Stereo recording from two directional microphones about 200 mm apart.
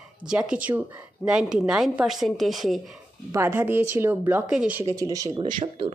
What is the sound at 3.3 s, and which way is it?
A woman's voice, 10° right (ahead or behind).